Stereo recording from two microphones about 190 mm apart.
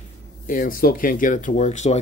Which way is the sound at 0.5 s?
45° left (ahead or behind).